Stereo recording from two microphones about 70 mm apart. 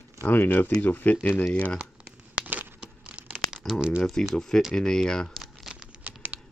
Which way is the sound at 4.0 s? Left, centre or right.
Centre.